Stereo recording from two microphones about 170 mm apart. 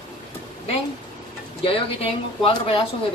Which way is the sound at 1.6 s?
30° left (ahead or behind).